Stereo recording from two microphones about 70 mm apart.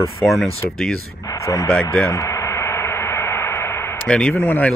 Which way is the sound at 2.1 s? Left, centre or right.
Left.